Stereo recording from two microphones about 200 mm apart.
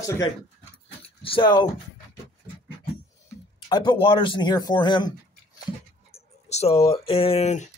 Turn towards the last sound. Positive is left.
turn(degrees=35)  # may be behind; listen again after turning